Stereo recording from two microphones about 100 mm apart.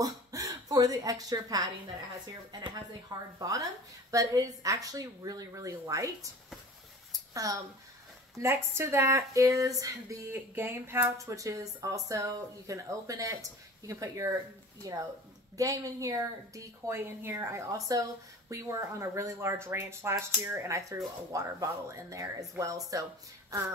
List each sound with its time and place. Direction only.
0.0 s speech: 35° right (ahead or behind)
7.1 s a sound: 35° right (ahead or behind)
8.4 s speech: 25° right (ahead or behind)
10.3 s speech: 25° right (ahead or behind)